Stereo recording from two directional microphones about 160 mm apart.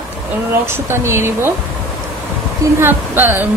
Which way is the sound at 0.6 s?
15° right (ahead or behind).